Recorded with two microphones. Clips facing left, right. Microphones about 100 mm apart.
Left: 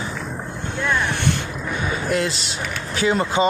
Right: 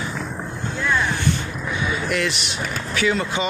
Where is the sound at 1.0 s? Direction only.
65° left (ahead or behind).